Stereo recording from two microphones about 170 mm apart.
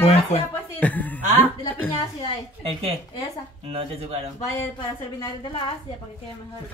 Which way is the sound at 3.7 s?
35° right (ahead or behind).